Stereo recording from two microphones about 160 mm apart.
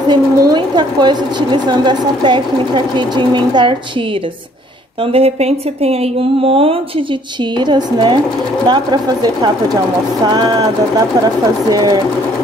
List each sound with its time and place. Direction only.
0.1 s a woman's voice: 25° right (ahead or behind)
5.1 s a woman's voice: 40° right (ahead or behind)